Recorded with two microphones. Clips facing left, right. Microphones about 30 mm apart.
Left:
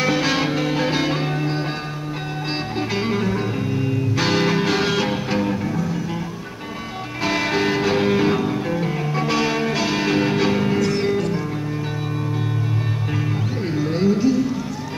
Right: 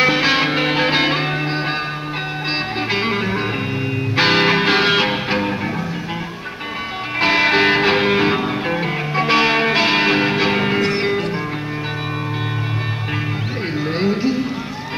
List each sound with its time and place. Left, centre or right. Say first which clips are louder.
0.0 s music: right 4 dB; right
2.9 s music: right 2 dB; right
7.2 s music: right 6 dB; right
13.7 s music: even; right